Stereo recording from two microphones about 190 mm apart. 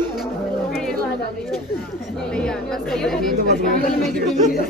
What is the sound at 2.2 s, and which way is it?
Speech, 5° left (ahead or behind).